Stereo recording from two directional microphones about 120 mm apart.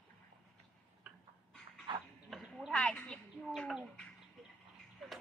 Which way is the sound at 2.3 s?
Centre (ahead or behind).